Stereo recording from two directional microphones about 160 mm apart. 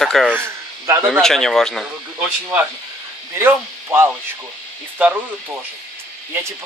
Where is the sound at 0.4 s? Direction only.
15° right (ahead or behind).